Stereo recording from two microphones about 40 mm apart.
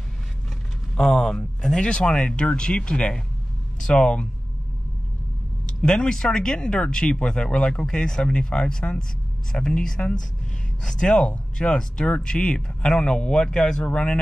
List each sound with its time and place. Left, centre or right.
0.9 s speech: centre
5.8 s speech: centre